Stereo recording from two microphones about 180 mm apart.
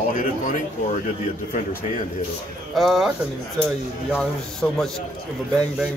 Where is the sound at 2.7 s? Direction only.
Centre (ahead or behind).